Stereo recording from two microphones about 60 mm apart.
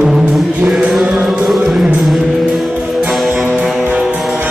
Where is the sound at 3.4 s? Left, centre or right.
Right.